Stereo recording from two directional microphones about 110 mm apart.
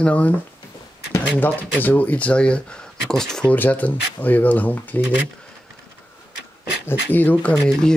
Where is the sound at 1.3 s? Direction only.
15° left (ahead or behind).